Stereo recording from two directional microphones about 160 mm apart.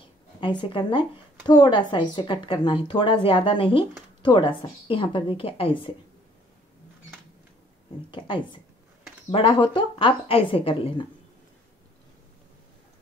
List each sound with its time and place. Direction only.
0.4 s speech: 30° left (ahead or behind)
9.3 s speech: 35° left (ahead or behind)